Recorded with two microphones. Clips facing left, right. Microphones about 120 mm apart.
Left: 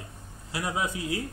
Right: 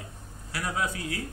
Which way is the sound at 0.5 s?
20° left (ahead or behind).